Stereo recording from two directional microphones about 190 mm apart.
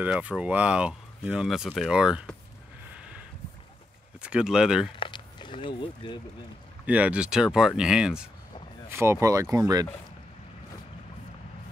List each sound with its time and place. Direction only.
0.0 s speech: 5° right (ahead or behind)
3.0 s a sound: 5° right (ahead or behind)
4.2 s speech: 5° right (ahead or behind)
4.9 s speech: 25° left (ahead or behind)
6.9 s speech: 5° right (ahead or behind)